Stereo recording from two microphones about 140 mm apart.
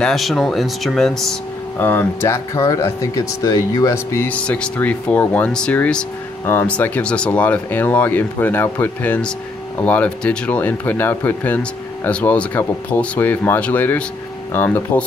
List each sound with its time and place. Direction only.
0.0 s speech: centre (ahead or behind)
1.8 s speech: 15° left (ahead or behind)